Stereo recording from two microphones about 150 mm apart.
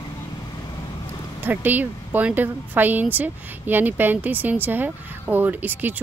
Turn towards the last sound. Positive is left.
turn(degrees=-10)  # may be behind; listen again after turning